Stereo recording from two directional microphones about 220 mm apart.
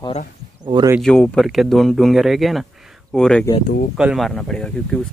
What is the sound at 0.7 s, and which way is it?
Speech, 20° right (ahead or behind).